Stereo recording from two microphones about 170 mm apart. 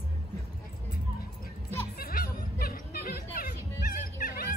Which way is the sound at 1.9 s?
60° left (ahead or behind).